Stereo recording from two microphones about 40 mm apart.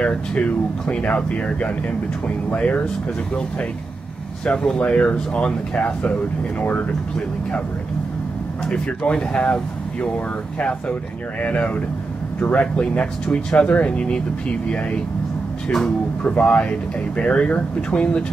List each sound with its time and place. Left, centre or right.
0.0 s speech: left
4.5 s speech: left
6.6 s speech: left
8.6 s speech: left
12.8 s speech: left
16.3 s speech: left